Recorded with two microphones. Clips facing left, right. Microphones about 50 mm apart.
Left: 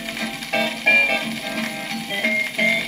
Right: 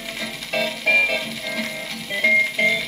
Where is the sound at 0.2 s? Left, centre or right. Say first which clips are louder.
Left 2 dB; left.